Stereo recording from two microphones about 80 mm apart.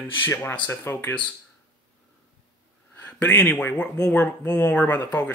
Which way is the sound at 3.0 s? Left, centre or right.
Centre.